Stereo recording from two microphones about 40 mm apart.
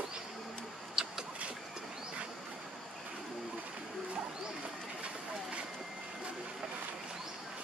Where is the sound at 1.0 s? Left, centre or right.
Centre.